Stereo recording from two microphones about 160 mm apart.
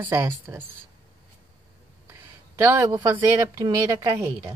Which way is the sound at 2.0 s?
15° right (ahead or behind).